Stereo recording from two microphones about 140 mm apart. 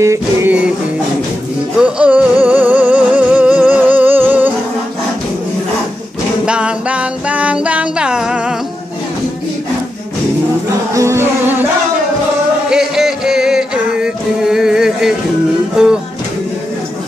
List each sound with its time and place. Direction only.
0.0 s music: 20° right (ahead or behind)
1.8 s music: 10° right (ahead or behind)
6.4 s music: 5° right (ahead or behind)
10.9 s music: 20° right (ahead or behind)
12.6 s music: 5° right (ahead or behind)